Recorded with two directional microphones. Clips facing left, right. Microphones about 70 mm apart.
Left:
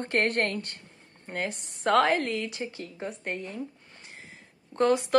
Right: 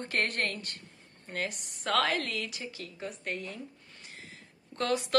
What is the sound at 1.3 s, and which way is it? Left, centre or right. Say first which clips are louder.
A woman's voice: left 3 dB; left.